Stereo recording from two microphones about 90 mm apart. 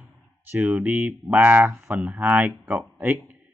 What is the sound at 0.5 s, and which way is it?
Speech, 20° right (ahead or behind).